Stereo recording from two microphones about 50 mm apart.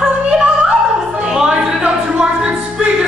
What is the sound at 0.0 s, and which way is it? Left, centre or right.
Music, centre.